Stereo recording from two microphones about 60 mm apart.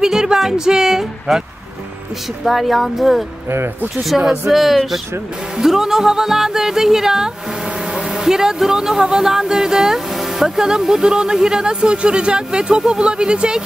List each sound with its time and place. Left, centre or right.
0.0 s speech: centre
2.4 s speech: centre
3.4 s speech: right
4.3 s speech: centre